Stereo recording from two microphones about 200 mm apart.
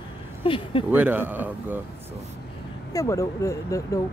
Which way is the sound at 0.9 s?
10° right (ahead or behind).